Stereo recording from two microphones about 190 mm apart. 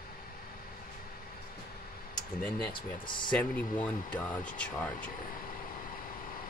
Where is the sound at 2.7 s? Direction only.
25° left (ahead or behind).